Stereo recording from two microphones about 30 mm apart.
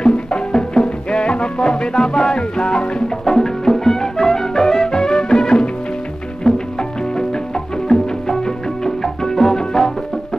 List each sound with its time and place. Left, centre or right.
0.0 s music: left
3.3 s music: centre